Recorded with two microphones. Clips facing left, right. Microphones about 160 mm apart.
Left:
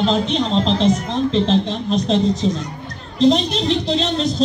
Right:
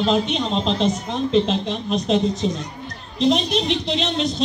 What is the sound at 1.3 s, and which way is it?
A man's voice, 30° left (ahead or behind).